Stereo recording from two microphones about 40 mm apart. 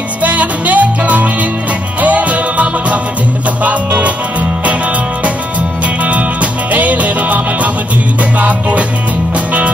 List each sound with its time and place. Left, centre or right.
0.2 s music: right
6.0 s music: right